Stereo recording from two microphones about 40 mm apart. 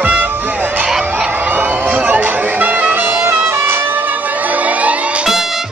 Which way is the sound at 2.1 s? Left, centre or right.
Right.